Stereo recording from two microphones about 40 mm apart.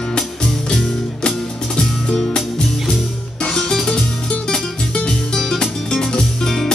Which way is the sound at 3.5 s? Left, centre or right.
Centre.